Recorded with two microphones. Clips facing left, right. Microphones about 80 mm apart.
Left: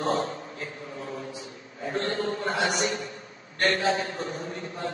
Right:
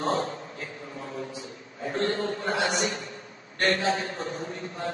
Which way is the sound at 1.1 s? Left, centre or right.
Left.